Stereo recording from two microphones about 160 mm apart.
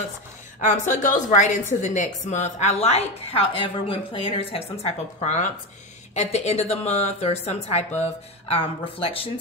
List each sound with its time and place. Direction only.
0.7 s a woman's voice: 55° left (ahead or behind); by 9.3 s 35° left (ahead or behind)